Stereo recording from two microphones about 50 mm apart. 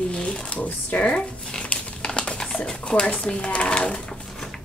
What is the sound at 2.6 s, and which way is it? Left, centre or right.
Speech, left.